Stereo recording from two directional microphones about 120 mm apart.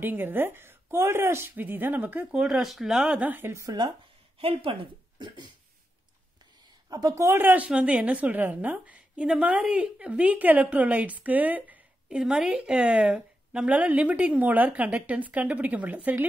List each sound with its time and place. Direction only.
0.0 s a woman's voice: 15° right (ahead or behind)
4.4 s speech: 50° right (ahead or behind)
6.9 s a woman's voice: 30° right (ahead or behind)
7.3 s a woman's voice: 15° right (ahead or behind)